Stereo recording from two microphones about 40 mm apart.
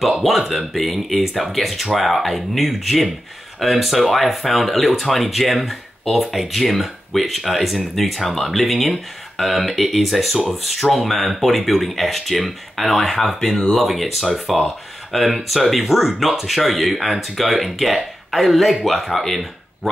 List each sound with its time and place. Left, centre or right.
0.0 s speech: centre